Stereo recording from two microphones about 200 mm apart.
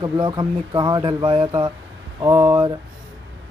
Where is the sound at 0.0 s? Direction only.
20° right (ahead or behind).